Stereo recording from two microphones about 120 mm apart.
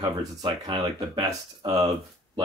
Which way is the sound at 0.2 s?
40° right (ahead or behind).